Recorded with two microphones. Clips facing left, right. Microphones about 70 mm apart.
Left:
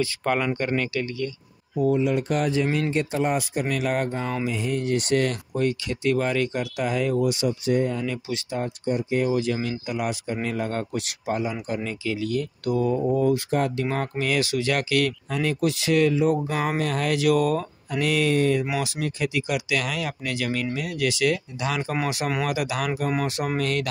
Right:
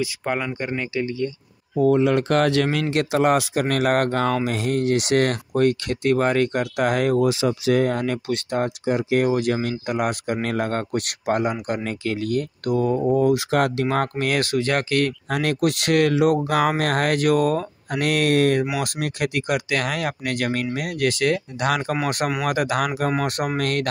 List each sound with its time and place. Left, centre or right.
0.0 s speech: centre
1.9 s speech: right
9.3 s speech: right
13.2 s speech: right
15.3 s speech: right